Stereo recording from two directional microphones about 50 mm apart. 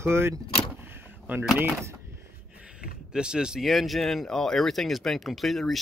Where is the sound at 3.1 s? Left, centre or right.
Centre.